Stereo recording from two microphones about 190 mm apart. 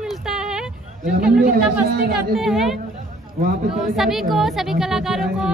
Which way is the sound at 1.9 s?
55° right (ahead or behind).